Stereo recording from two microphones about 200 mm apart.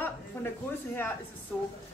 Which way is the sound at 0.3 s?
15° left (ahead or behind).